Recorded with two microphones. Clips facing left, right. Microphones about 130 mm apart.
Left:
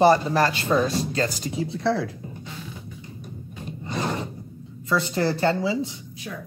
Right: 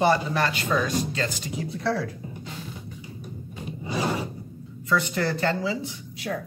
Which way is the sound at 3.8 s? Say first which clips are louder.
Right 1 dB; 5° right (ahead or behind).